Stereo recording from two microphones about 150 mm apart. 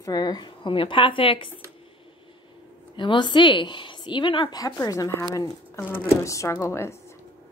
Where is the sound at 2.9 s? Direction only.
30° left (ahead or behind).